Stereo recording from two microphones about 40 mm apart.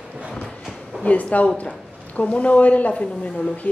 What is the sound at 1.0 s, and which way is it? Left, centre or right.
A woman's voice, left.